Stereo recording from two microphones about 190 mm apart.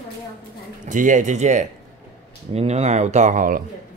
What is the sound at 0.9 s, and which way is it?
Speech, 40° right (ahead or behind).